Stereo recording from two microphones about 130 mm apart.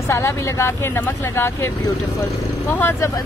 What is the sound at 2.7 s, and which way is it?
Speech, 15° left (ahead or behind).